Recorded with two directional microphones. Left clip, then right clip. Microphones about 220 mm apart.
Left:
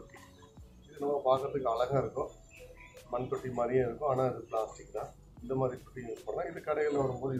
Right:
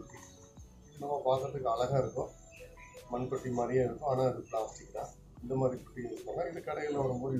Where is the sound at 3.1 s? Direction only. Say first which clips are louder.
Left 1 dB; centre (ahead or behind).